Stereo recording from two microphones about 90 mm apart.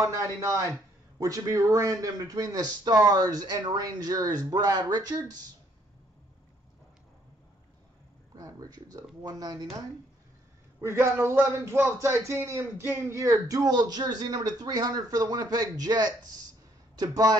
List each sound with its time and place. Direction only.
0.0 s speech: 35° right (ahead or behind)
8.4 s speech: 45° right (ahead or behind)
10.8 s speech: 30° right (ahead or behind); by 17.4 s 45° right (ahead or behind)